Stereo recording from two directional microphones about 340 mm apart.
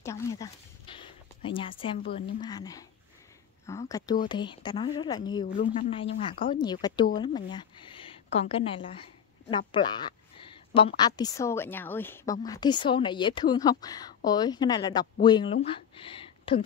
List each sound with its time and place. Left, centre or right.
0.0 s speech: centre